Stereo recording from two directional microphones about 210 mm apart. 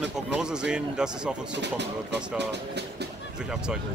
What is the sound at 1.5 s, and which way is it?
Speech, 55° right (ahead or behind).